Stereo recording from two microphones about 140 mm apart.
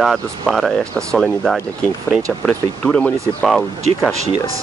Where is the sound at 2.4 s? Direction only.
10° left (ahead or behind).